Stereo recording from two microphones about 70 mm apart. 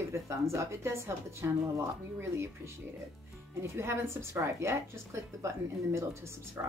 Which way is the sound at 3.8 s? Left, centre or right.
Right.